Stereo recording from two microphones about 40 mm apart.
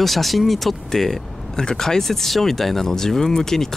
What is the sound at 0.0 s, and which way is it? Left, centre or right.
Speech, centre.